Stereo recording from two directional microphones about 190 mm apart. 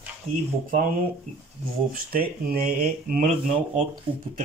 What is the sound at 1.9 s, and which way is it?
Speech, 50° right (ahead or behind).